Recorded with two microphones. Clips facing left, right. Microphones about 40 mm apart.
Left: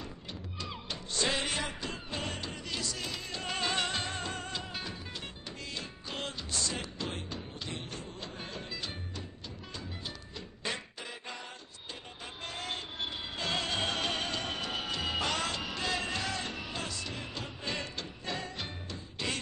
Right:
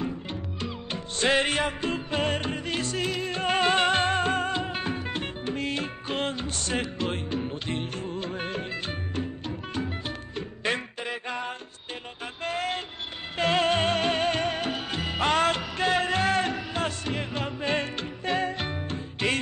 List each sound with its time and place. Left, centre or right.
0.0 s music: right
12.4 s vehicle: right
13.4 s music: right